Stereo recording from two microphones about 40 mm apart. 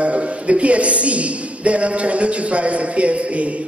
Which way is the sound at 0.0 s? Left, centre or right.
Right.